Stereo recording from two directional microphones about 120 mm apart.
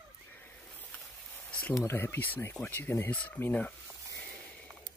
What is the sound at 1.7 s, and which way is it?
Speech, 20° left (ahead or behind).